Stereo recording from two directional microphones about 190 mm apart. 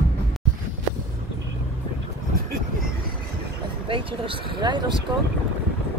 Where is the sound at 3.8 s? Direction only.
30° right (ahead or behind).